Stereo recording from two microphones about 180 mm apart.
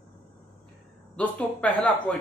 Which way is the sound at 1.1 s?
5° left (ahead or behind).